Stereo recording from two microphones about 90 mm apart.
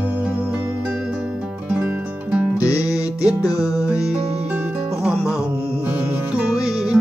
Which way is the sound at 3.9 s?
10° right (ahead or behind).